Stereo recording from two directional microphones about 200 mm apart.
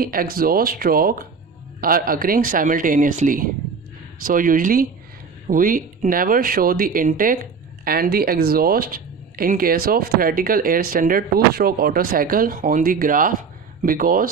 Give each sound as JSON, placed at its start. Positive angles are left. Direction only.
{"t": 0.0, "sound": "speech", "side_deg": -45}